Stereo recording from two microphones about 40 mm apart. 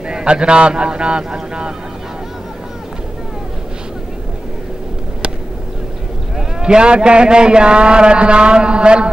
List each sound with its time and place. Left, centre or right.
0.1 s a man's voice: right
6.3 s a man's voice: right